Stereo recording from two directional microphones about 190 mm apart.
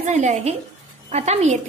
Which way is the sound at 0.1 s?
35° right (ahead or behind).